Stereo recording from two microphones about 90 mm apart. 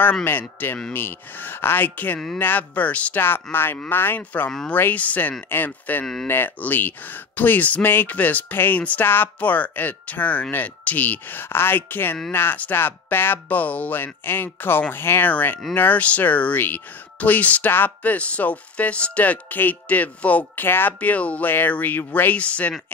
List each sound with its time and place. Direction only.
0.0 s speech: 20° left (ahead or behind)